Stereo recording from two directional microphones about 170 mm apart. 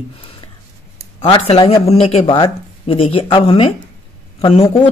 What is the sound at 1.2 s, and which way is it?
Speech, 35° left (ahead or behind).